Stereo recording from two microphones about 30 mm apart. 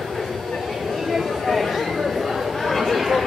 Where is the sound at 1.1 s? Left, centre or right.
Centre.